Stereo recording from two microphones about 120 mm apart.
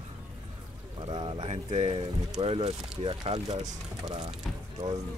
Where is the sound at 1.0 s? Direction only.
45° right (ahead or behind).